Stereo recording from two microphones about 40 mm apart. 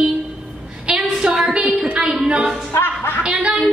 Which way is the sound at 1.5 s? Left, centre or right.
Centre.